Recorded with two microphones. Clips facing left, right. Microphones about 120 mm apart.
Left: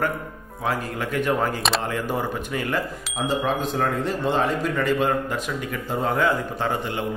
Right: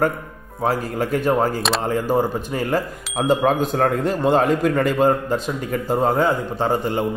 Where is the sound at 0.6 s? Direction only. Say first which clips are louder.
Right 5 dB; 35° right (ahead or behind).